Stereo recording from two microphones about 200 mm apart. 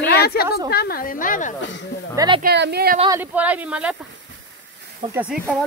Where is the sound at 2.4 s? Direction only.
55° right (ahead or behind).